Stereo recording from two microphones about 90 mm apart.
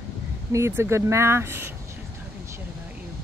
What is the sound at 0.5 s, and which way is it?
Speech, 30° right (ahead or behind).